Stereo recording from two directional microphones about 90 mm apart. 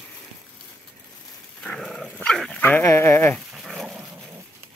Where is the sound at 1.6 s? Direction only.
5° left (ahead or behind).